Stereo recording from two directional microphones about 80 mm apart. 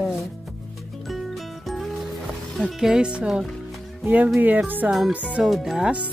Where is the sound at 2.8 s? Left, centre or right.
Centre.